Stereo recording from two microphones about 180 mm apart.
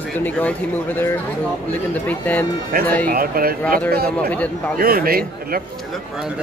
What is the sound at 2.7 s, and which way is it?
A man's voice, 55° right (ahead or behind).